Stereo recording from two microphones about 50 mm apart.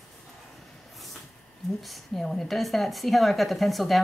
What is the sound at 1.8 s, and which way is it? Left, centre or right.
A woman's voice, centre.